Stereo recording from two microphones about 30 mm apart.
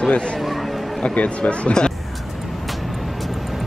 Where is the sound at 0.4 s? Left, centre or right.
Centre.